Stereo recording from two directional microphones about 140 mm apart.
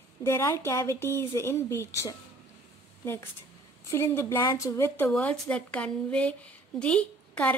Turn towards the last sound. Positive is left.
turn(degrees=10)  # may be behind; listen again after turning